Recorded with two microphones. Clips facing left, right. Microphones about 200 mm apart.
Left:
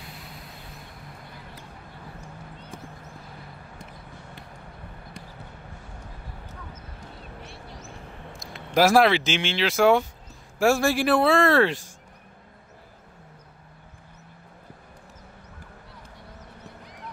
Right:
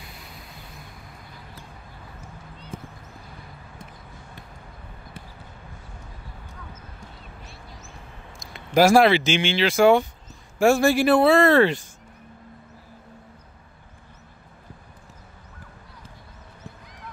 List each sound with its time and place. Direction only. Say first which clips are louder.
7.4 s vehicle: left 3 dB; 65° left (ahead or behind)
8.3 s speech: right 1 dB; centre (ahead or behind)